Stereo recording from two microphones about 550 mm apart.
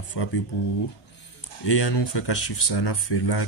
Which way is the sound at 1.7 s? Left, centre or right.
Left.